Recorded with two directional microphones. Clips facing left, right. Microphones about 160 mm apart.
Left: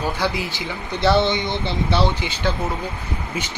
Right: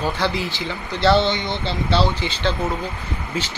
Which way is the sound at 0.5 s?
15° left (ahead or behind).